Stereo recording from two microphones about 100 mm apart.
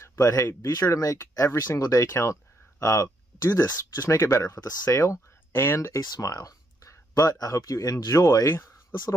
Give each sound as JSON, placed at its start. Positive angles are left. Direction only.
{"t": 0.0, "sound": "a sound", "side_deg": 30}
{"t": 0.4, "sound": "speech", "side_deg": 20}
{"t": 0.7, "sound": "speech", "side_deg": 35}